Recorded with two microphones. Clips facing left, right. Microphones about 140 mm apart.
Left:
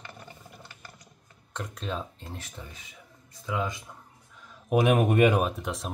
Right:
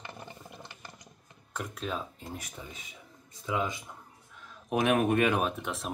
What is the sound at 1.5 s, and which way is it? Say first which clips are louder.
Speech: left 1 dB; 5° right (ahead or behind).